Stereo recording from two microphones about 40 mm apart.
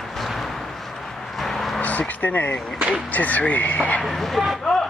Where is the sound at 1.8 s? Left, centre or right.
Left.